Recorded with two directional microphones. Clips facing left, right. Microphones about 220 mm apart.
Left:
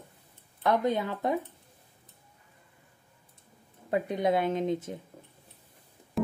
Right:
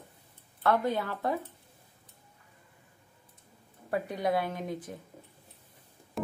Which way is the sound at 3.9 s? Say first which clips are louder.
Left 3 dB; 20° left (ahead or behind).